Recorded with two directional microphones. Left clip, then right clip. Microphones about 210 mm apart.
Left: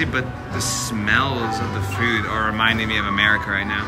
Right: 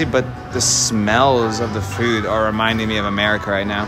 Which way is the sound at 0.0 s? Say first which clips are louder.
Right 4 dB; 20° right (ahead or behind).